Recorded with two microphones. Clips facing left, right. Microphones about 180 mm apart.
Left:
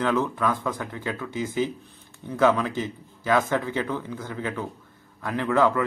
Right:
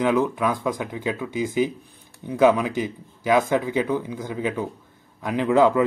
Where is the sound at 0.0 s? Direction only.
15° right (ahead or behind).